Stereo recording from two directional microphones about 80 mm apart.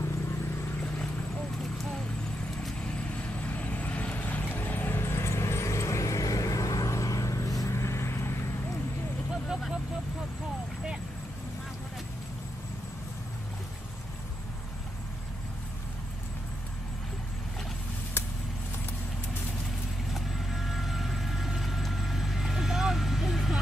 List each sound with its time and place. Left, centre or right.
3.3 s vehicle: centre
9.3 s vehicle: centre
20.2 s vehicle: centre